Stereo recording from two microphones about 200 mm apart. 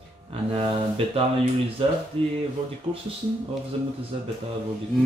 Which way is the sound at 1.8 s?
30° right (ahead or behind).